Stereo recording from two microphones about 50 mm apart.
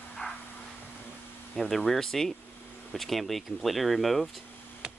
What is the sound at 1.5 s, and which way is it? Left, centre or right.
Speech, centre.